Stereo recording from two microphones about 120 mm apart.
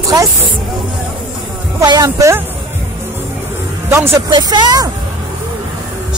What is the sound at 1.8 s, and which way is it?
Speech, 30° right (ahead or behind).